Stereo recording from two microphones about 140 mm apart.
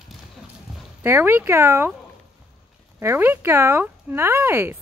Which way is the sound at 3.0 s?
15° right (ahead or behind).